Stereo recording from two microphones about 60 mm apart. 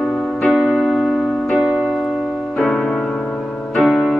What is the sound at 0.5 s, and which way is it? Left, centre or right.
Keyboard, centre.